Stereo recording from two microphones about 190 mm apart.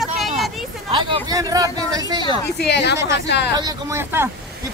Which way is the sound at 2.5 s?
60° left (ahead or behind).